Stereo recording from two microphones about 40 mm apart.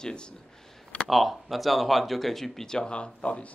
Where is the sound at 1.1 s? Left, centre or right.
Centre; by 3.1 s left.